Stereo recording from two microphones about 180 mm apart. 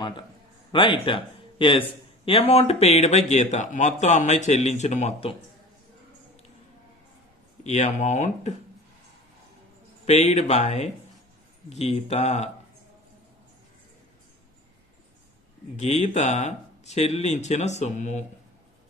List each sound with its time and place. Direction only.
0.7 s a man's voice: 25° left (ahead or behind)
7.6 s a man's voice: 40° left (ahead or behind)
10.0 s a man's voice: 40° left (ahead or behind)
15.7 s a man's voice: 35° left (ahead or behind)